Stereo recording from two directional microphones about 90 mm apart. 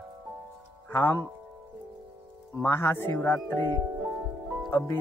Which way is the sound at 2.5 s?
30° left (ahead or behind).